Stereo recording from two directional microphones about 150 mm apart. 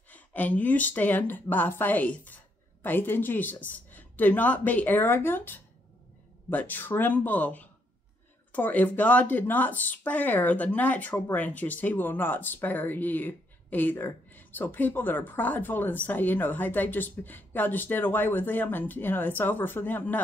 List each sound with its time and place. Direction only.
0.1 s speech: 10° left (ahead or behind)